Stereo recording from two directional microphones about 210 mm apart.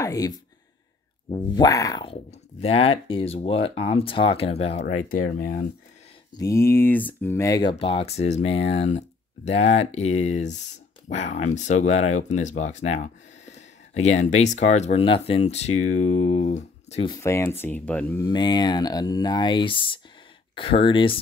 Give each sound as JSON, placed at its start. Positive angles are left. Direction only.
{"t": 0.0, "sound": "speech", "side_deg": 15}
{"t": 6.3, "sound": "speech", "side_deg": 15}
{"t": 17.1, "sound": "speech", "side_deg": 15}
{"t": 18.2, "sound": "speech", "side_deg": 20}